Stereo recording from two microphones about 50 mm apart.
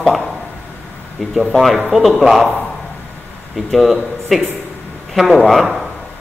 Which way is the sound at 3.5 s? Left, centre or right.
Centre.